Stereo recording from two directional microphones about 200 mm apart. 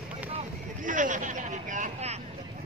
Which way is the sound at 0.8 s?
40° right (ahead or behind).